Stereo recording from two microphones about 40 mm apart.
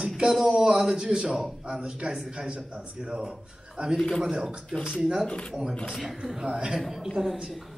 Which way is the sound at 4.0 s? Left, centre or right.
Centre.